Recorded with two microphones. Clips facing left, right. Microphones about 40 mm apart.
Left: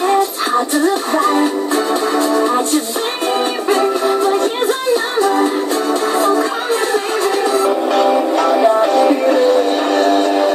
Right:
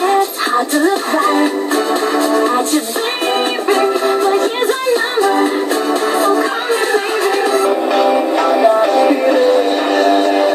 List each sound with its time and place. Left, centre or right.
1.2 s music: right
3.8 s music: right
7.9 s music: centre
9.0 s music: right